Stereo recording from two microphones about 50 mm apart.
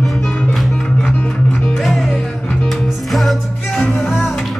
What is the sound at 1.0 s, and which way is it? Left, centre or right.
Music, left.